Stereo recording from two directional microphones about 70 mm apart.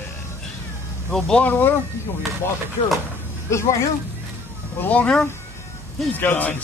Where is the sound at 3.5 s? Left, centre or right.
Left.